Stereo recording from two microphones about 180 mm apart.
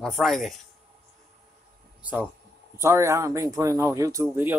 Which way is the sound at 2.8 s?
15° right (ahead or behind).